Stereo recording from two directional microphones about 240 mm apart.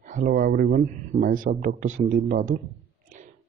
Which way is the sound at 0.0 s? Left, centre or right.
Right.